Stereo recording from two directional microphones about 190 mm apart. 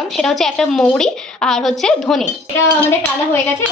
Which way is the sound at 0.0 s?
Centre (ahead or behind).